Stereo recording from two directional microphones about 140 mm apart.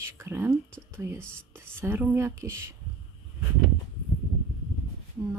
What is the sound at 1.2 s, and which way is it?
Speech, 5° left (ahead or behind).